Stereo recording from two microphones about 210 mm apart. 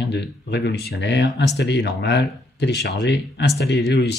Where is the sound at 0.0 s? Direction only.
55° left (ahead or behind).